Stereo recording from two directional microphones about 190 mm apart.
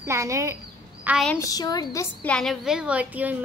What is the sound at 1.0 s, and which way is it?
Speech, centre (ahead or behind).